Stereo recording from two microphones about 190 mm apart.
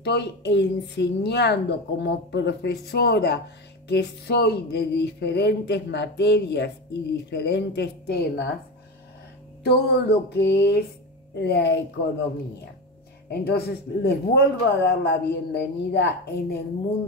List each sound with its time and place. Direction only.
0.0 s speech: 65° left (ahead or behind)
9.6 s speech: 55° left (ahead or behind)
13.3 s speech: 55° left (ahead or behind)